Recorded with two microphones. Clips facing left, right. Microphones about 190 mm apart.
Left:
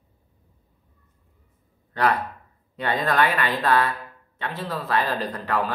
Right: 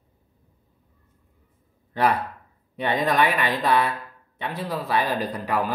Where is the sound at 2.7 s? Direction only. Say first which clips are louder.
Right 1 dB; 20° right (ahead or behind).